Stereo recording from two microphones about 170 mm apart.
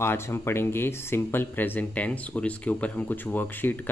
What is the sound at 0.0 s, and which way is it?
Speech, 15° left (ahead or behind).